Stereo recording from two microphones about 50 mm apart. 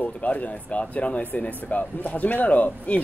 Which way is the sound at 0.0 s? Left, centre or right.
Left.